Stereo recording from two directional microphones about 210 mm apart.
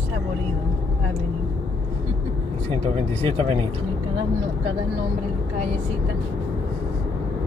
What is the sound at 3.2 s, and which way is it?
Speech, 30° right (ahead or behind).